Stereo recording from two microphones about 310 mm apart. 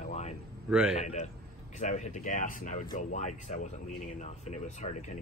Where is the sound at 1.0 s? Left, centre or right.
Left.